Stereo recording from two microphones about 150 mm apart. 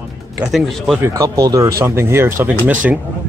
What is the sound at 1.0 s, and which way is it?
Speech, 25° right (ahead or behind).